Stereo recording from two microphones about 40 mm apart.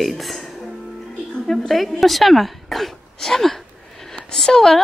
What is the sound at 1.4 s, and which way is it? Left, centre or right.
Speech, centre.